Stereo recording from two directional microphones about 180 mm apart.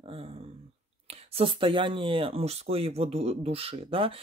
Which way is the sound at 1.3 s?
30° right (ahead or behind).